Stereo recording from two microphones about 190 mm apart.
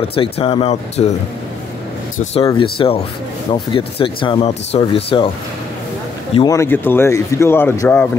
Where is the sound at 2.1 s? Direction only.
30° left (ahead or behind).